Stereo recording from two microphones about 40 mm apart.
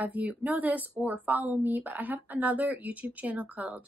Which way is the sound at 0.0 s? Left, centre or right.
Right.